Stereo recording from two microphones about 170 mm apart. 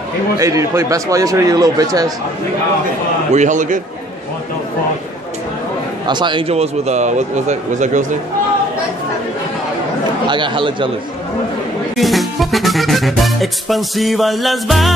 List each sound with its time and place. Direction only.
0.4 s a man's voice: 20° right (ahead or behind)
3.3 s a man's voice: 45° right (ahead or behind)
6.0 s a man's voice: 25° right (ahead or behind); by 8.0 s 45° right (ahead or behind)
10.2 s a man's voice: 25° right (ahead or behind)
12.0 s music: centre (ahead or behind)